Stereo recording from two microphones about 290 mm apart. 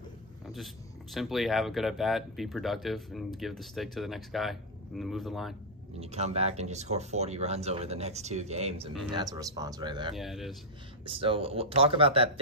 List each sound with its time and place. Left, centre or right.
1.1 s speech: centre
5.9 s speech: right
10.1 s speech: centre
11.1 s speech: centre